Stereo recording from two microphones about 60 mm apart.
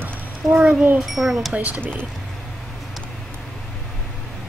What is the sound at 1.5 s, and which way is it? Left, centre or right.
Speech, right.